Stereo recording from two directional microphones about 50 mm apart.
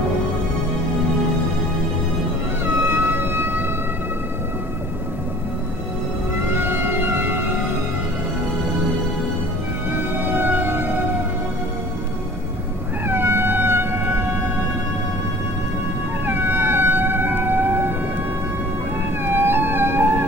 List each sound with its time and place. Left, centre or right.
2.6 s music: right
6.5 s music: right
9.9 s music: right
13.1 s cat: right
16.3 s whale vocalization: right
19.2 s music: right